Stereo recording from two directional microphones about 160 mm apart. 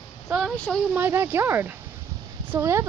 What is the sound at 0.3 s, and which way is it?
Speech, centre (ahead or behind).